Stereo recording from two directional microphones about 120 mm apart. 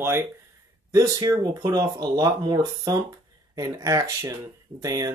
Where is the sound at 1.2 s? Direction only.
30° right (ahead or behind).